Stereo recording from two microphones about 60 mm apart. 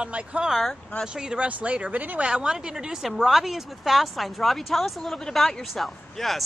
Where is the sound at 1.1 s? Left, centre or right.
Centre.